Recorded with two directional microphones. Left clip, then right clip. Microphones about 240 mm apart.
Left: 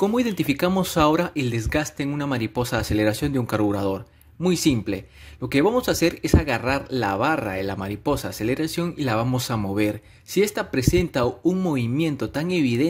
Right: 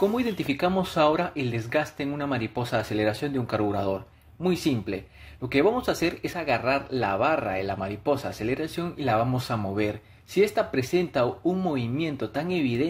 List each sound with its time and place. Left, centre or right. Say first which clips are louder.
0.0 s speech: left 3 dB; left